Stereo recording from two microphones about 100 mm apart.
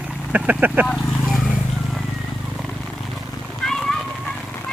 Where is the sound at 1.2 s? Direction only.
Centre (ahead or behind).